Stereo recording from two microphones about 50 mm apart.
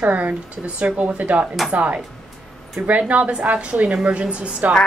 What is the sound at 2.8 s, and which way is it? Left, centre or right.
Speech, right.